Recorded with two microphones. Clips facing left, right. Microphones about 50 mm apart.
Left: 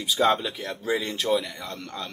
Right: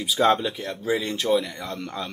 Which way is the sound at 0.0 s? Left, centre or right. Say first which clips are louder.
Right 2 dB; centre.